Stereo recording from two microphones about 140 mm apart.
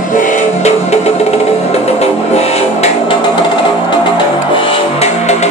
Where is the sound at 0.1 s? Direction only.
70° left (ahead or behind).